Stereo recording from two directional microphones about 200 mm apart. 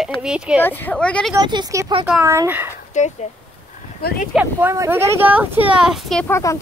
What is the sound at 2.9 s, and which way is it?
Speech, 35° left (ahead or behind).